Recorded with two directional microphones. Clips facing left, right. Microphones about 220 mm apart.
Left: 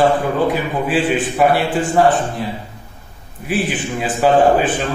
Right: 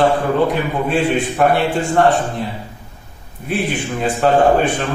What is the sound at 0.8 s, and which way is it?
A man's voice, 5° left (ahead or behind).